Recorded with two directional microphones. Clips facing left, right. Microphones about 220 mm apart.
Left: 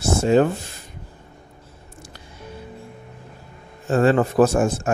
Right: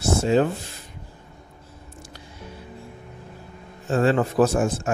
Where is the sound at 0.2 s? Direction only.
50° left (ahead or behind).